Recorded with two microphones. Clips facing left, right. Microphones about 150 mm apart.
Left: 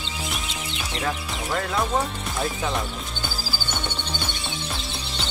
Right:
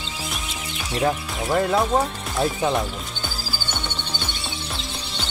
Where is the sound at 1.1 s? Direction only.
20° right (ahead or behind).